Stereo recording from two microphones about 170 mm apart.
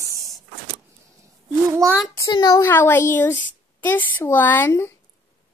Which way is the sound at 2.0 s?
20° left (ahead or behind).